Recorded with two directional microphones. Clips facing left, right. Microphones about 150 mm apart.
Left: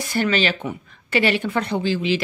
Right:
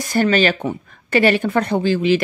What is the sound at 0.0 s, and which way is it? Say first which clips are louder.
Speech: right 5 dB; 45° right (ahead or behind).